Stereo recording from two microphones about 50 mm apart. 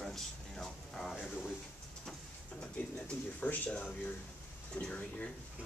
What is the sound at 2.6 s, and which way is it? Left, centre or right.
Speech, left.